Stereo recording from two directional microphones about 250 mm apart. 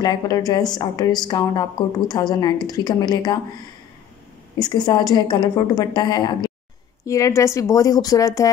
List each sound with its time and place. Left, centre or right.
0.0 s a woman's voice: centre
4.6 s a woman's voice: centre